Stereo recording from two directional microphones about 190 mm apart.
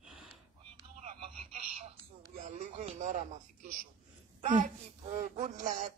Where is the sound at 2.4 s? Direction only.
35° right (ahead or behind).